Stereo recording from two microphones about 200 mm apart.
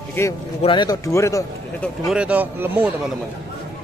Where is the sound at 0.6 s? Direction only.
25° left (ahead or behind).